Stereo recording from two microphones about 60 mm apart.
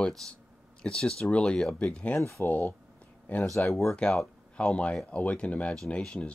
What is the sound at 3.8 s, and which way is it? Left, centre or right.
Speech, centre.